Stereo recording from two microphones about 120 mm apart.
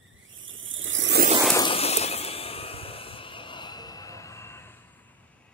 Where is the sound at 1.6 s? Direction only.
55° left (ahead or behind); by 5.0 s 15° left (ahead or behind).